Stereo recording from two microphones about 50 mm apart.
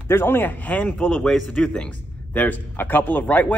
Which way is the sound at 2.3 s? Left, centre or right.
Left.